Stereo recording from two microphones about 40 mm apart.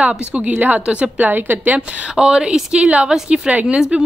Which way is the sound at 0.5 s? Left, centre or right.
Right.